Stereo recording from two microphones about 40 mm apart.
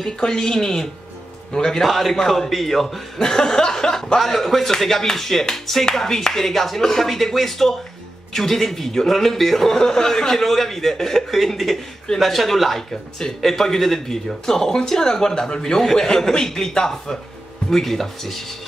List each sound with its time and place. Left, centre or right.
0.0 s a man's voice: centre
1.9 s a man's voice: centre
3.2 s a man's voice: centre
4.2 s a man's voice: centre